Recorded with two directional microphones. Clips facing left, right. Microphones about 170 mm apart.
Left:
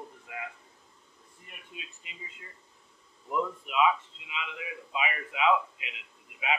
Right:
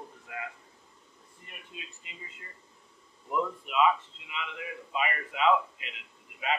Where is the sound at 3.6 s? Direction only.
15° left (ahead or behind).